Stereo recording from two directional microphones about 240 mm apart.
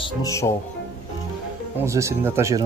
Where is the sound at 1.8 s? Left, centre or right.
Centre.